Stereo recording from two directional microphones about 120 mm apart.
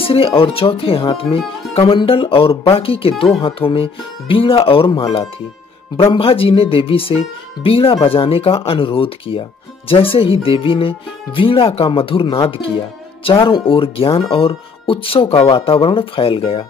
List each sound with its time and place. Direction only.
0.1 s speech: 50° left (ahead or behind)
13.5 s speech: 50° left (ahead or behind)